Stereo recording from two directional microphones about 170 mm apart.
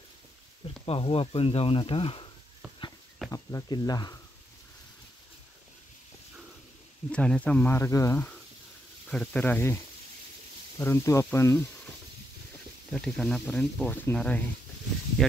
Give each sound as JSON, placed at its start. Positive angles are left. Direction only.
{"t": 0.8, "sound": "speech", "side_deg": 35}
{"t": 3.3, "sound": "speech", "side_deg": 20}
{"t": 7.1, "sound": "speech", "side_deg": 5}
{"t": 9.1, "sound": "speech", "side_deg": 5}
{"t": 10.8, "sound": "speech", "side_deg": 15}
{"t": 12.9, "sound": "speech", "side_deg": 0}